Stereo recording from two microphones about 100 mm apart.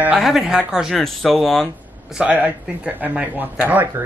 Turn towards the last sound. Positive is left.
turn(degrees=-15)  # may be behind; listen again after turning